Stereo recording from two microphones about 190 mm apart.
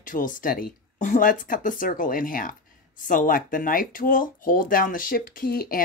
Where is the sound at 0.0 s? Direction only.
45° left (ahead or behind).